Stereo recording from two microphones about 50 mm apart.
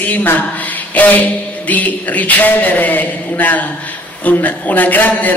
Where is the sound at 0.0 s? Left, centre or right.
Left.